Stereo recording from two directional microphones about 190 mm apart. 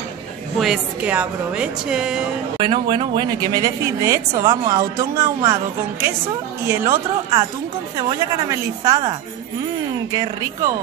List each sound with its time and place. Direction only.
0.6 s a woman's voice: 5° right (ahead or behind)
2.6 s a woman's voice: 25° right (ahead or behind)
10.1 s a woman's voice: 20° right (ahead or behind)